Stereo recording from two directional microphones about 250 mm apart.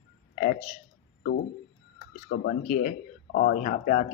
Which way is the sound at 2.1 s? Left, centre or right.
Left.